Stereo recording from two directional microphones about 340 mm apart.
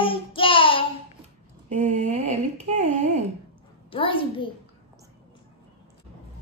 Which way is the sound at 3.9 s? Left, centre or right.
Centre.